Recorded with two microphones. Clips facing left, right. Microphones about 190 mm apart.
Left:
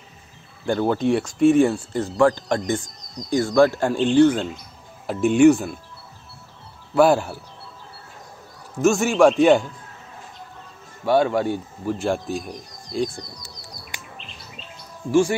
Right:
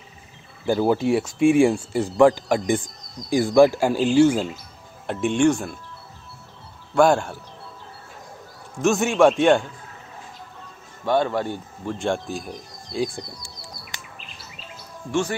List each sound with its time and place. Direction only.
0.7 s a man's voice: 5° right (ahead or behind)
7.0 s a man's voice: 5° left (ahead or behind)
8.8 s a man's voice: centre (ahead or behind)
11.1 s speech: 10° left (ahead or behind)
14.1 s bird vocalization: 5° right (ahead or behind)